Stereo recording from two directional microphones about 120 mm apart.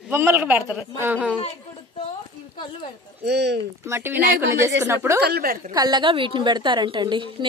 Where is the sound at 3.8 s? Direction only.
20° right (ahead or behind).